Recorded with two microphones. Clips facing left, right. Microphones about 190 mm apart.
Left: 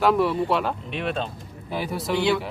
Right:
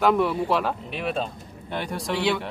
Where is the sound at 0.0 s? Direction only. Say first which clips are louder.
Left 1 dB; centre (ahead or behind).